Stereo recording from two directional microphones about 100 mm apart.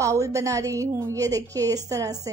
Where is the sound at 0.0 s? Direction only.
30° right (ahead or behind).